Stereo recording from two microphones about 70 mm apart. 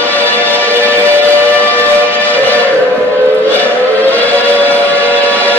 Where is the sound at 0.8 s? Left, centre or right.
Left.